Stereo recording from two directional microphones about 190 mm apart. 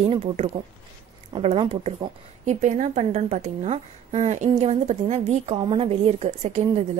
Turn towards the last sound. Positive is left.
turn(degrees=-35)  # may be behind; listen again after turning